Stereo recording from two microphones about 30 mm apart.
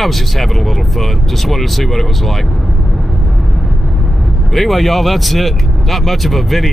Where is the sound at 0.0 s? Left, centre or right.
Centre.